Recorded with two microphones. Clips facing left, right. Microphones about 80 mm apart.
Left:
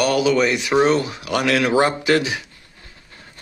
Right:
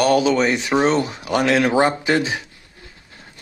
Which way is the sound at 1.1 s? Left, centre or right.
Right.